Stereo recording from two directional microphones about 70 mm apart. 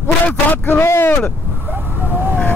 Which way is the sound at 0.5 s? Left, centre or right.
Left.